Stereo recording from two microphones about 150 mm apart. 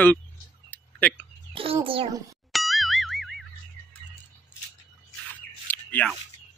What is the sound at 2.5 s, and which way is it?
Boing, centre (ahead or behind).